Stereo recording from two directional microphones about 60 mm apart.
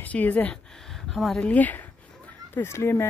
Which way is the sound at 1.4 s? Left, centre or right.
Left.